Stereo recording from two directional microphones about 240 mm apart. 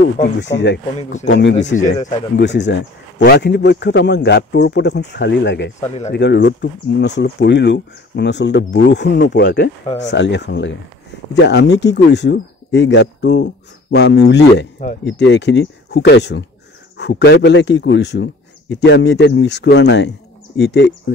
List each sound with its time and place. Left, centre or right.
0.0 s speech: left
1.7 s speech: left
2.3 s speech: left